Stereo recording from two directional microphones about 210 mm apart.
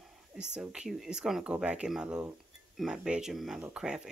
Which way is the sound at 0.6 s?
Centre (ahead or behind).